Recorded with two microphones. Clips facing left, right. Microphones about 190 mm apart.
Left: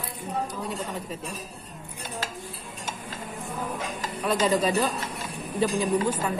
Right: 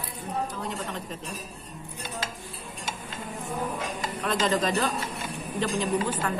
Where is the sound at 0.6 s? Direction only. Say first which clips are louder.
Left 1 dB; 10° left (ahead or behind).